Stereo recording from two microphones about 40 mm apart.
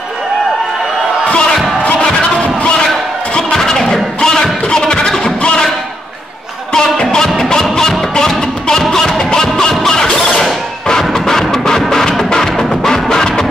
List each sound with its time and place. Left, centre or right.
1.8 s music: left
3.3 s music: centre
6.7 s music: centre
10.9 s music: centre